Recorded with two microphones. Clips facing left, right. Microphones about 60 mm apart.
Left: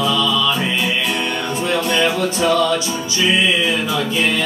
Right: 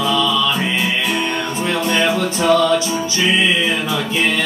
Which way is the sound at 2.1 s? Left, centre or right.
Right.